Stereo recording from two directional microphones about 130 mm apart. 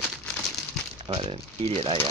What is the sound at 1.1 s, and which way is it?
Speech, 45° right (ahead or behind).